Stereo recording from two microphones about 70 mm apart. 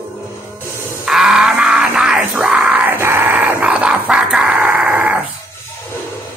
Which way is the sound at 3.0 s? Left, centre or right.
Right.